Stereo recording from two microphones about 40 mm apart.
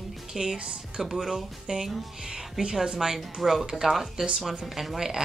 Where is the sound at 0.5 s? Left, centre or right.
Right.